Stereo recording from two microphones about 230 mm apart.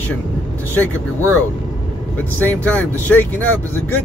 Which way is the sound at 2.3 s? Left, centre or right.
Centre.